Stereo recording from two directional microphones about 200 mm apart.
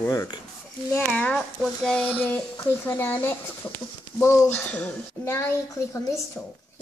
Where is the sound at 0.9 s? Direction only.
5° left (ahead or behind).